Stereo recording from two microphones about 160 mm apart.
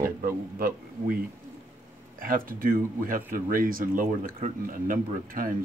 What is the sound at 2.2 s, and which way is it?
Speech, 60° right (ahead or behind).